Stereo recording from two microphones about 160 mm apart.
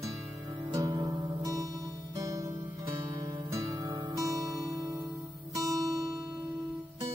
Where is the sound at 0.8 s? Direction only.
25° right (ahead or behind).